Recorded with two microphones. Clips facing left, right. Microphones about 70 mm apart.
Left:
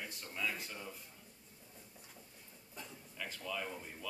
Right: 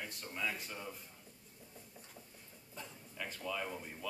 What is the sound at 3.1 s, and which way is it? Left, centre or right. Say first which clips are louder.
Speech: right 2 dB; centre.